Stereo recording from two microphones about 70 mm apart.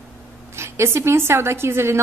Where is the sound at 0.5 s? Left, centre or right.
Right.